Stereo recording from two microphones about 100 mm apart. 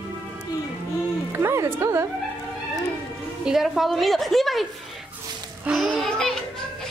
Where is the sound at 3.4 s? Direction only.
5° right (ahead or behind).